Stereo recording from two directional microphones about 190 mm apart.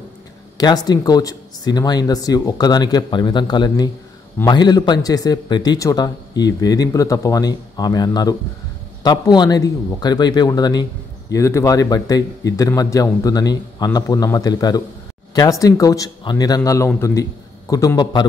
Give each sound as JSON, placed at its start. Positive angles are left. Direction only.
{"t": 0.6, "sound": "speech", "side_deg": 20}